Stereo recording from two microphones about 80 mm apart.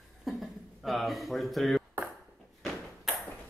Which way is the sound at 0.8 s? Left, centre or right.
Centre.